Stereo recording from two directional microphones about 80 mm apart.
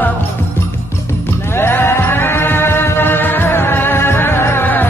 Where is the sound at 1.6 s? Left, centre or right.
Left.